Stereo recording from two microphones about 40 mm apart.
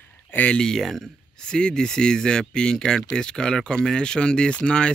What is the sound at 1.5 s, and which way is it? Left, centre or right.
Speech, centre.